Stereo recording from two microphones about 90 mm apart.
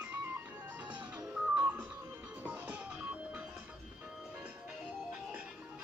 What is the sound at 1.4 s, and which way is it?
Music, 10° right (ahead or behind).